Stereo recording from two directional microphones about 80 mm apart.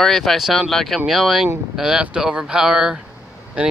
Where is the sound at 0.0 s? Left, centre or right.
Centre.